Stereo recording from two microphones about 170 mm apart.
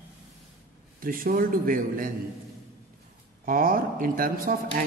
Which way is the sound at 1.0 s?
55° right (ahead or behind).